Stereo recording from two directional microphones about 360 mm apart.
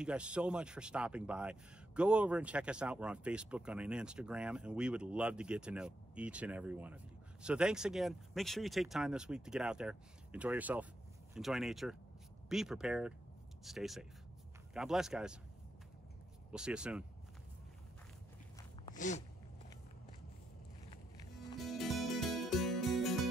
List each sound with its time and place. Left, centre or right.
0.0 s speech: centre
16.5 s speech: centre
18.9 s a sound: left
21.5 s music: centre